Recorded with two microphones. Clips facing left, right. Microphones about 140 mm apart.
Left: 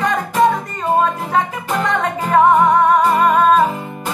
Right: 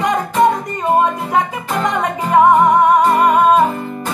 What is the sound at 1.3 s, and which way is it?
Music, 15° right (ahead or behind).